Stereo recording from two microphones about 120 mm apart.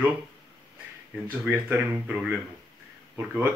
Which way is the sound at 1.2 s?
15° right (ahead or behind).